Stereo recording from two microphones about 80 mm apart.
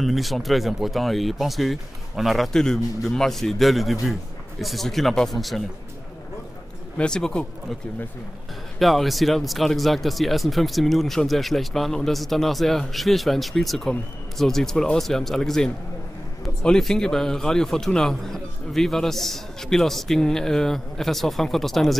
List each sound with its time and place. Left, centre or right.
0.0 s speech: centre
7.0 s speech: centre
8.7 s speech: centre